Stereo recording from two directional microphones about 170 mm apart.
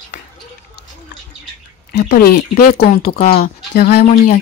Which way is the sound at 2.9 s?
40° left (ahead or behind).